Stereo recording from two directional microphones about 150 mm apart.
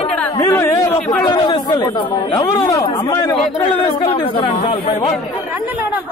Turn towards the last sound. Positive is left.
turn(degrees=30)  # may be behind; listen again after turning